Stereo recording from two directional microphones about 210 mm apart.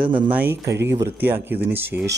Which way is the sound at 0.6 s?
55° right (ahead or behind).